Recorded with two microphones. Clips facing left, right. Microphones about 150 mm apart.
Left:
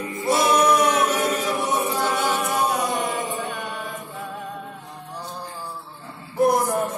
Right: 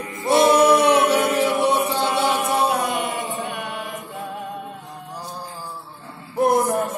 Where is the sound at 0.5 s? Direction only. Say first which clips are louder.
Right 3 dB; 30° right (ahead or behind).